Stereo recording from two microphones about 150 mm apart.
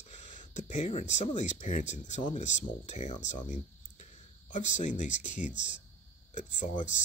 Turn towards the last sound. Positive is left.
turn(degrees=55)  # may be behind; listen again after turning